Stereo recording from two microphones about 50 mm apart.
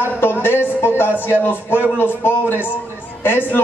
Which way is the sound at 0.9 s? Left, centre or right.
Left.